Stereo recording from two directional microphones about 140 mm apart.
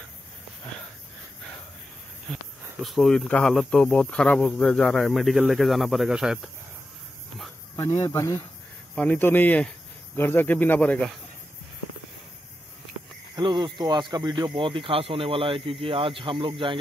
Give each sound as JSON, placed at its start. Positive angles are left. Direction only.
{"t": 2.8, "sound": "speech", "side_deg": 0}
{"t": 8.0, "sound": "speech", "side_deg": 20}
{"t": 13.4, "sound": "speech", "side_deg": -35}